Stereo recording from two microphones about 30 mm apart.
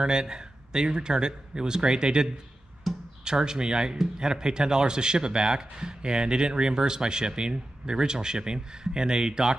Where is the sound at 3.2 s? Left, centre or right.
Right.